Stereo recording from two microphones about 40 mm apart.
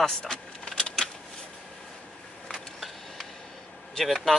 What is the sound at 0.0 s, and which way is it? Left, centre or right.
Vehicle, centre.